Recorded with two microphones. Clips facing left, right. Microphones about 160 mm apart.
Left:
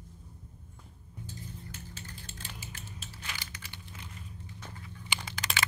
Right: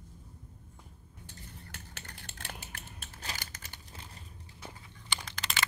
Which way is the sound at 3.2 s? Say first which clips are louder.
Right 3 dB; 40° right (ahead or behind).